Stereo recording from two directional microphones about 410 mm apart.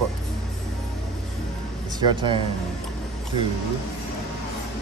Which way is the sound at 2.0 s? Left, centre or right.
Centre.